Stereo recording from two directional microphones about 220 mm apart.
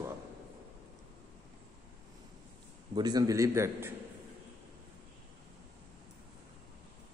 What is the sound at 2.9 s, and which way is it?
A man's voice, 20° right (ahead or behind).